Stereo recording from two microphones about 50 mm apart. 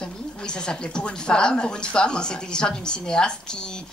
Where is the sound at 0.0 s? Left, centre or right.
Centre.